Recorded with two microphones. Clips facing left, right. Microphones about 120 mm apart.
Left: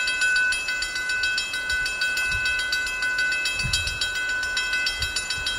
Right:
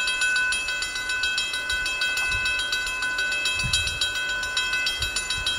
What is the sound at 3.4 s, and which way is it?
Train, 10° right (ahead or behind).